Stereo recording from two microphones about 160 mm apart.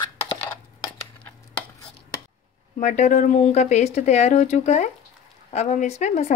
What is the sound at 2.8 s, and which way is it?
Speech, 50° left (ahead or behind).